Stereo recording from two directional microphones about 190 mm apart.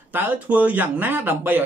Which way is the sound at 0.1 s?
10° right (ahead or behind).